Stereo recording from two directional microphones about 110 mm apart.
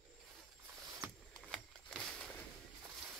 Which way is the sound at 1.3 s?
5° left (ahead or behind).